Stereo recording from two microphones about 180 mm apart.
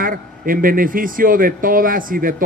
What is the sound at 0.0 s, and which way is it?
A man's voice, 50° right (ahead or behind).